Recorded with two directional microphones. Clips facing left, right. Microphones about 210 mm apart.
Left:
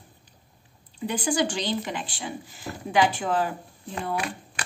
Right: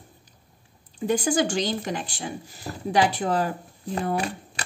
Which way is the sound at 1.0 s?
45° right (ahead or behind).